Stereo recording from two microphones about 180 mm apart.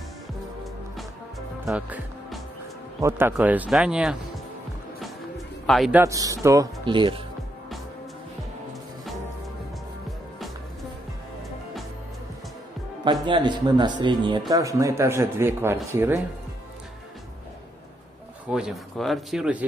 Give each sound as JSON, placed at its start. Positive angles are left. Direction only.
{"t": 3.0, "sound": "speech", "side_deg": -15}
{"t": 5.7, "sound": "speech", "side_deg": 0}
{"t": 5.9, "sound": "a man's voice", "side_deg": -20}
{"t": 13.0, "sound": "a man's voice", "side_deg": -25}
{"t": 18.5, "sound": "speech", "side_deg": 0}